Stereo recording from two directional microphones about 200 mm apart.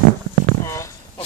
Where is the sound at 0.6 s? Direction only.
15° left (ahead or behind).